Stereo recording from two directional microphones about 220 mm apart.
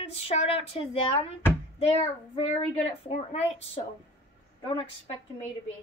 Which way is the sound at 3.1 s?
30° left (ahead or behind).